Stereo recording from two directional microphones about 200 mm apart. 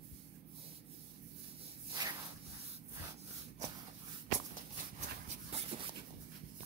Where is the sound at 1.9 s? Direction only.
20° right (ahead or behind).